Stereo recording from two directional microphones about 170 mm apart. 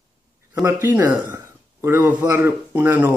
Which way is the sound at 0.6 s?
15° right (ahead or behind).